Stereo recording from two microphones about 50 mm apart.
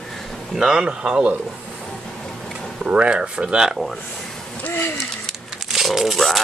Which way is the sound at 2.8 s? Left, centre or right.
Right.